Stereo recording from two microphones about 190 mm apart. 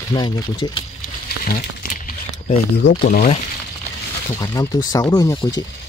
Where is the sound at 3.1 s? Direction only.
45° left (ahead or behind).